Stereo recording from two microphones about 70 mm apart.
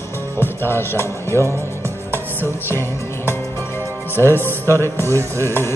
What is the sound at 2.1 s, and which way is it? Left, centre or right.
Music, left.